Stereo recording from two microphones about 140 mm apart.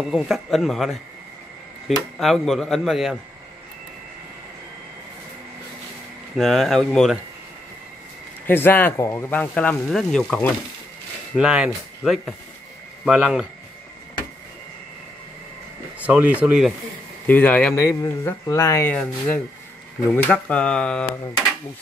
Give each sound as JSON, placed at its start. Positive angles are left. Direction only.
{"t": 0.0, "sound": "speech", "side_deg": -5}
{"t": 2.1, "sound": "speech", "side_deg": 0}
{"t": 6.3, "sound": "speech", "side_deg": 0}
{"t": 8.5, "sound": "speech", "side_deg": 15}
{"t": 11.3, "sound": "speech", "side_deg": -5}
{"t": 16.0, "sound": "speech", "side_deg": -10}
{"t": 17.3, "sound": "speech", "side_deg": 10}